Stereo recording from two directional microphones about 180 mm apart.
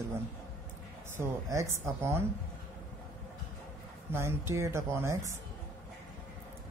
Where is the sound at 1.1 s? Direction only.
15° right (ahead or behind).